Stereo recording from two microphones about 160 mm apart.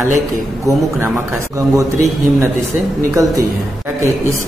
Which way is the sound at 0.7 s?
15° right (ahead or behind).